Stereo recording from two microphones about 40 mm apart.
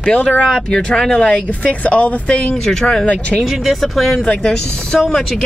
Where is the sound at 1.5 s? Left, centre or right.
Left.